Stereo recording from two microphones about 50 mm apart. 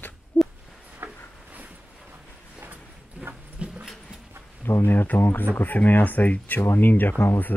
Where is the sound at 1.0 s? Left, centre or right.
Right.